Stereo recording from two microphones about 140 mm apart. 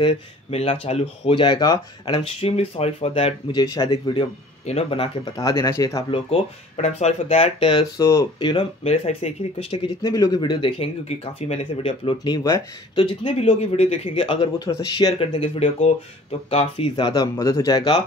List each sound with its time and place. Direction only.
0.0 s speech: 45° left (ahead or behind)
2.2 s speech: 45° left (ahead or behind)
3.5 s speech: 30° left (ahead or behind)
4.6 s speech: 45° left (ahead or behind); by 6.0 s 25° left (ahead or behind)
6.8 s speech: 50° left (ahead or behind)
7.7 s speech: 25° left (ahead or behind)
8.4 s speech: 35° left (ahead or behind)
8.8 s speech: 50° left (ahead or behind)
10.0 s speech: 30° left (ahead or behind)
14.6 s speech: 25° left (ahead or behind)
15.1 s speech: 45° left (ahead or behind)